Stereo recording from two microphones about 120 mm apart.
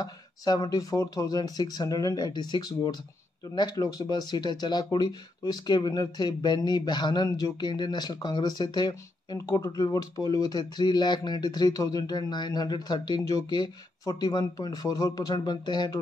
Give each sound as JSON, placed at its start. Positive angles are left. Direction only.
{"t": 0.0, "sound": "speech", "side_deg": 35}